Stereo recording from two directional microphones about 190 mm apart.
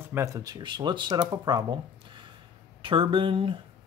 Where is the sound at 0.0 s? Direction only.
15° right (ahead or behind).